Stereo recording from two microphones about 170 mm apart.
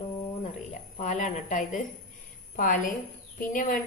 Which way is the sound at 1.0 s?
45° left (ahead or behind).